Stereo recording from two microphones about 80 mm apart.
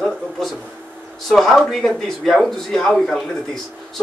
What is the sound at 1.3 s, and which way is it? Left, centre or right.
Speech, centre.